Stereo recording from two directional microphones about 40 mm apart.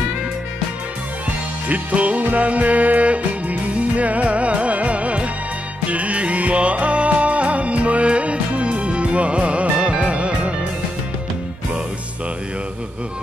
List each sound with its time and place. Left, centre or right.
1.7 s music: right